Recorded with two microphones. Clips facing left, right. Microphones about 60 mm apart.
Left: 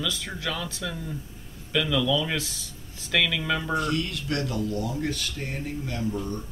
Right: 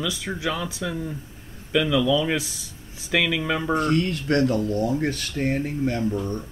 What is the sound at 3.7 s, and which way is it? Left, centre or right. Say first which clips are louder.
Speech: right 5 dB; right.